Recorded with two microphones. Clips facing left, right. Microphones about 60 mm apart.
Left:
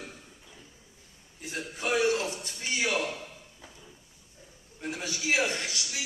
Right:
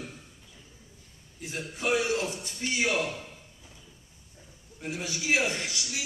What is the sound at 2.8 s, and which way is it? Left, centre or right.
Speech, right.